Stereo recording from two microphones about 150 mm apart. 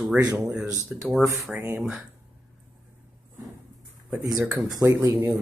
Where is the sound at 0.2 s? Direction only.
25° right (ahead or behind).